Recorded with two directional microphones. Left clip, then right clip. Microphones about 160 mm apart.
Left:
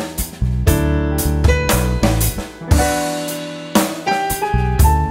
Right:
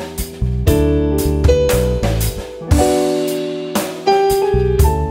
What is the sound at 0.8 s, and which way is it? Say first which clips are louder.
Music: right 5 dB; 25° right (ahead or behind).